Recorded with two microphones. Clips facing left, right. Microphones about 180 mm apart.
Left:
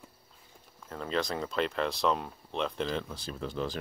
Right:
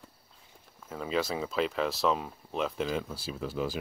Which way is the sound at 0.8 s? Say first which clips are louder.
Right 1 dB; 5° right (ahead or behind).